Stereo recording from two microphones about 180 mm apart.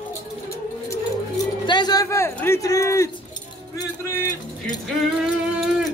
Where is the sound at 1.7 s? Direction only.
25° left (ahead or behind).